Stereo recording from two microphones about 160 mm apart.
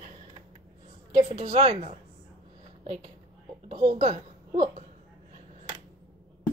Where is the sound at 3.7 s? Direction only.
40° right (ahead or behind).